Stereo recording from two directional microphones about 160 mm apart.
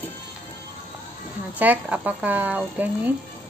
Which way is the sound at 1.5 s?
10° right (ahead or behind).